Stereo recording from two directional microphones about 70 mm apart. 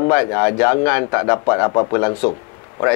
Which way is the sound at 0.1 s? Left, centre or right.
Left.